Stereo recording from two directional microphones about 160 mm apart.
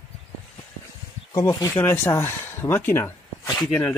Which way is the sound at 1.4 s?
20° left (ahead or behind).